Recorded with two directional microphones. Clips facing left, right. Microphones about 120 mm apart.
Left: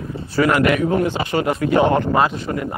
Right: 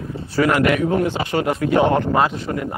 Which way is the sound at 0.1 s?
15° left (ahead or behind).